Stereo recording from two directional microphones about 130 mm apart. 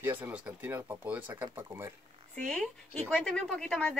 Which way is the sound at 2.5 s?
5° left (ahead or behind).